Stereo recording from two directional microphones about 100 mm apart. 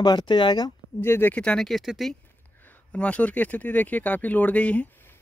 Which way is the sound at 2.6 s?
15° left (ahead or behind).